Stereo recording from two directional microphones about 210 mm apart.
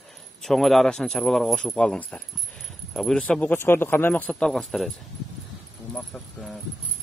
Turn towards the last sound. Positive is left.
turn(degrees=0)  # may be behind; listen again after turning